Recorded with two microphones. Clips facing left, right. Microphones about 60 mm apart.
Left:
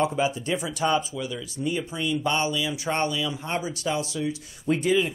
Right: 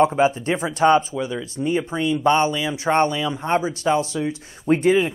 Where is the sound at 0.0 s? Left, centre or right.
Right.